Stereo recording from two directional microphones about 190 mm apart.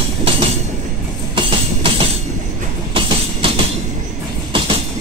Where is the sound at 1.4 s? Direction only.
30° right (ahead or behind).